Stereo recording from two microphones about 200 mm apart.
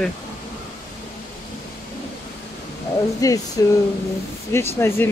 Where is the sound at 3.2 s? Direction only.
15° left (ahead or behind).